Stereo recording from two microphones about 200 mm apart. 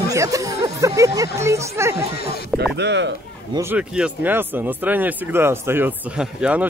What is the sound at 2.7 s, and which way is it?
Speech, 60° right (ahead or behind).